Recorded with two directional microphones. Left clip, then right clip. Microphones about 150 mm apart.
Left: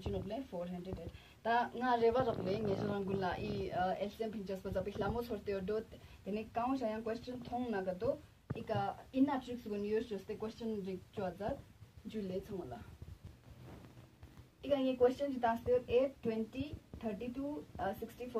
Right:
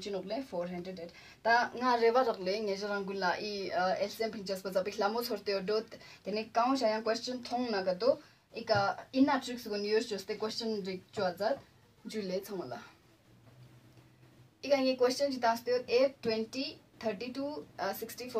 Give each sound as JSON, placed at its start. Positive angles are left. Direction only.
{"t": 0.3, "sound": "a woman's voice", "side_deg": -30}
{"t": 14.6, "sound": "a woman's voice", "side_deg": -35}
{"t": 17.7, "sound": "speech", "side_deg": -30}